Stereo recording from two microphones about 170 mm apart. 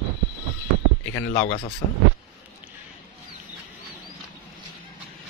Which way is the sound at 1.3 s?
40° left (ahead or behind).